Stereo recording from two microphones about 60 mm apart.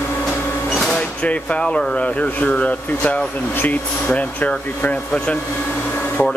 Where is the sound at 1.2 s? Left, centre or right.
Centre.